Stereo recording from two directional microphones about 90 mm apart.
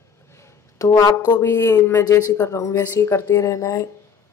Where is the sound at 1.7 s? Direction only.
40° left (ahead or behind).